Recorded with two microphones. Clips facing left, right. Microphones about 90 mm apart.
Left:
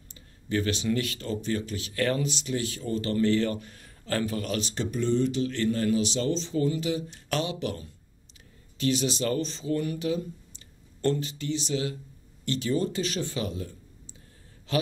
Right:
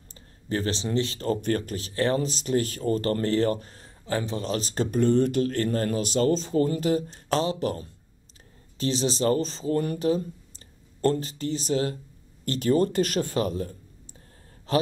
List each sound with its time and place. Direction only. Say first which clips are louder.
0.1 s speech: even; 35° right (ahead or behind)
1.3 s speech: right 3 dB; 50° right (ahead or behind); by 3.9 s 35° right (ahead or behind)
4.0 s a man's voice: right 1 dB; 20° right (ahead or behind)
4.6 s speech: right 5 dB; 40° right (ahead or behind)
14.7 s a sound: right 4 dB; 40° right (ahead or behind)